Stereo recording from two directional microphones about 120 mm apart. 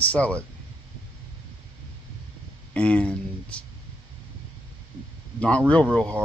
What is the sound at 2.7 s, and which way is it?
Speech, 10° left (ahead or behind).